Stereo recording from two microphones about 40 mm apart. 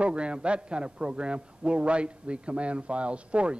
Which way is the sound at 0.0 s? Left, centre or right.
Right.